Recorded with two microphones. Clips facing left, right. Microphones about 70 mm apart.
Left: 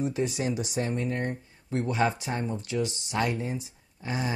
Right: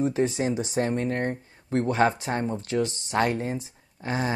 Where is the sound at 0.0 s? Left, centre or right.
Right.